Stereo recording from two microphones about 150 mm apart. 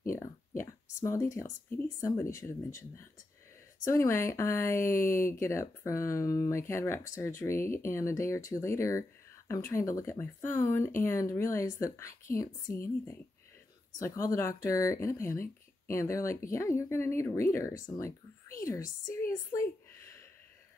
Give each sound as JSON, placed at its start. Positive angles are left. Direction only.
{"t": 0.1, "sound": "speech", "side_deg": 20}
{"t": 3.9, "sound": "speech", "side_deg": 20}
{"t": 13.9, "sound": "speech", "side_deg": 20}
{"t": 19.1, "sound": "a sound", "side_deg": 20}